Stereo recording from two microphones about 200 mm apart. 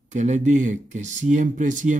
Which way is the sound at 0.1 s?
35° right (ahead or behind).